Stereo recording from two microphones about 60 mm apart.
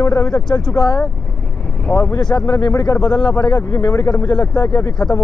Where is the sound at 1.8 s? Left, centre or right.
Left.